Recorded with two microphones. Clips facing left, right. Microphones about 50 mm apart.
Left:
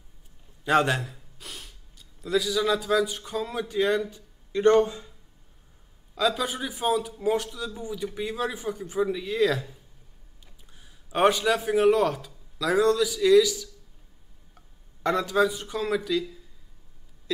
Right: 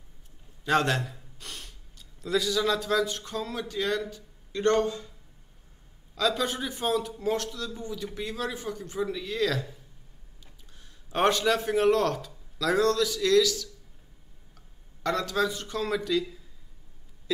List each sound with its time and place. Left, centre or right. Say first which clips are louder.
0.7 s a man's voice: left 2 dB; centre
1.0 s speech: even; centre
6.1 s a man's voice: left 1 dB; centre
15.0 s a man's voice: left 4 dB; centre